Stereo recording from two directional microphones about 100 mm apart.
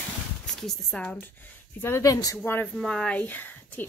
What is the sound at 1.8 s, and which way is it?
Speech, 25° left (ahead or behind).